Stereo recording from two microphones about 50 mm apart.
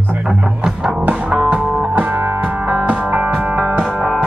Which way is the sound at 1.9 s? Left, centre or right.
Right.